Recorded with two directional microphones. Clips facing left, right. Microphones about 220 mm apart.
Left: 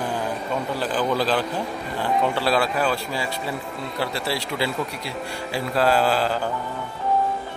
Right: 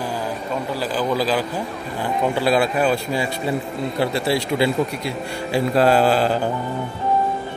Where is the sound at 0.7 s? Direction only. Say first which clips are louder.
Right 2 dB; 10° right (ahead or behind).